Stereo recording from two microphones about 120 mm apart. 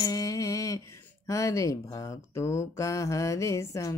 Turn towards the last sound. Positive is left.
turn(degrees=25)  # may be behind; listen again after turning